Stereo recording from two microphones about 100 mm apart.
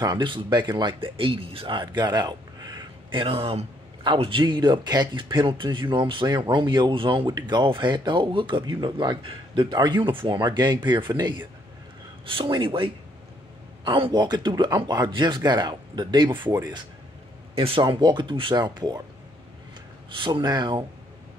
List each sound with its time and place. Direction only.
0.0 s speech: 50° right (ahead or behind); by 3.6 s 80° right
4.0 s a man's voice: 55° right (ahead or behind)
14.1 s speech: 45° right (ahead or behind)
17.6 s a man's voice: 65° right (ahead or behind)
17.8 s speech: 50° right (ahead or behind)
20.2 s speech: 50° right (ahead or behind)